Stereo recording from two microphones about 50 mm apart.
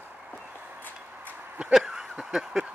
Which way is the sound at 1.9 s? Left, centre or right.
Centre.